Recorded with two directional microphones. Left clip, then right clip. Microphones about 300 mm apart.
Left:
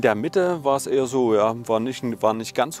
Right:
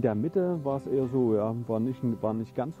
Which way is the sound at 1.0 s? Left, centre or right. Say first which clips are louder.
Left 6 dB; left.